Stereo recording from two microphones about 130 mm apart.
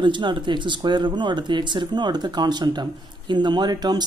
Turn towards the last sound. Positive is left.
turn(degrees=-30)  # may be behind; listen again after turning